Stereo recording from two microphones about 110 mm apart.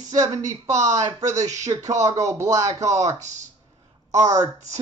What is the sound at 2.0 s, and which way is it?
Speech, 30° right (ahead or behind).